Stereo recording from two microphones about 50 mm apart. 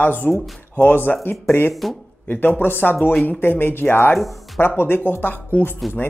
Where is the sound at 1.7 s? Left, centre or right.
Centre.